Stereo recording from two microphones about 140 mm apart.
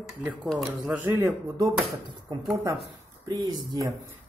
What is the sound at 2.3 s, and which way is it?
Speech, 25° right (ahead or behind).